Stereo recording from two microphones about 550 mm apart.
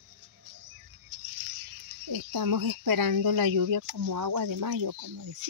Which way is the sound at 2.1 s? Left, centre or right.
Right.